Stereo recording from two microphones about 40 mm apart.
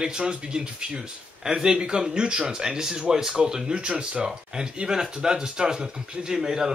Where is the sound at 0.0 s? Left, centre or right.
Right.